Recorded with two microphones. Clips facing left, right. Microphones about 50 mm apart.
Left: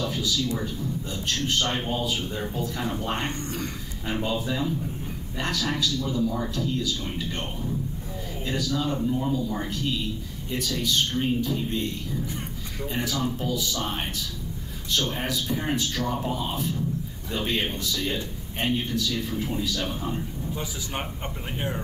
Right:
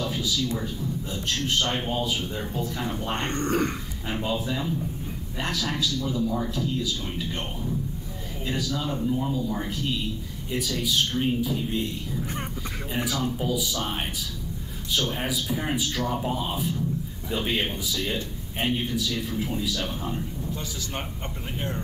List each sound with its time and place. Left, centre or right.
0.0 s a man's voice: centre
3.3 s speech: right
4.1 s a man's voice: centre
21.5 s speech: centre